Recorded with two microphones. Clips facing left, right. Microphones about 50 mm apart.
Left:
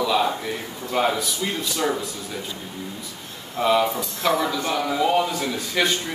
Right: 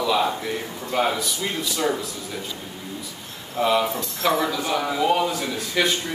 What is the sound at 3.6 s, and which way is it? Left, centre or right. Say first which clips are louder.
Speech: left 1 dB; centre.